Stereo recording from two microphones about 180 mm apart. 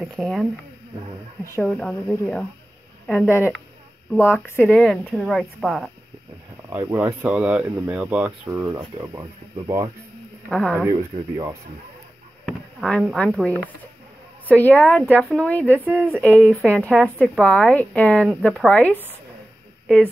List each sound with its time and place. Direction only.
0.0 s speech: centre (ahead or behind)
1.4 s speech: 15° left (ahead or behind)
1.7 s speech: 5° left (ahead or behind)
4.6 s speech: 5° left (ahead or behind)
6.5 s speech: 15° right (ahead or behind)
12.4 s speech: centre (ahead or behind)
15.8 s speech: 10° right (ahead or behind)
16.3 s speech: 5° left (ahead or behind)